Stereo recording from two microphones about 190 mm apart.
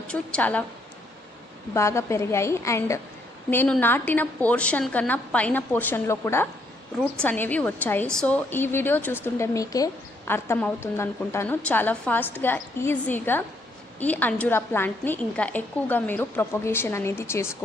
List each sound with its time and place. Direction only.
0.1 s a woman's voice: 5° left (ahead or behind)
1.7 s a woman's voice: 15° left (ahead or behind)